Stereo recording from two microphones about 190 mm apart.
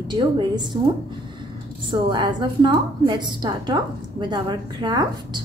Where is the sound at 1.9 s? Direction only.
25° right (ahead or behind).